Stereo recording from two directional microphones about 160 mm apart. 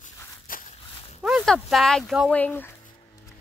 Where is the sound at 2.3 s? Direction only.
10° left (ahead or behind).